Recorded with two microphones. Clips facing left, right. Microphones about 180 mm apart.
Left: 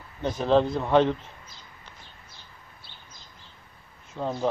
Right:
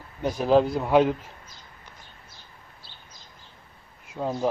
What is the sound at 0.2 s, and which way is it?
A man's voice, 10° right (ahead or behind).